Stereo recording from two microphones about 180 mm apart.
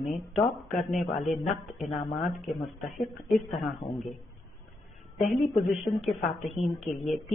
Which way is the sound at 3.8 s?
25° left (ahead or behind).